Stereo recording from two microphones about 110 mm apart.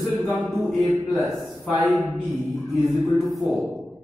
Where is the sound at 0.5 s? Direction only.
Centre (ahead or behind).